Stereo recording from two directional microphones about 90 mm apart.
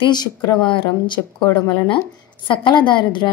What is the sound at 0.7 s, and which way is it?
Speech, 70° left (ahead or behind).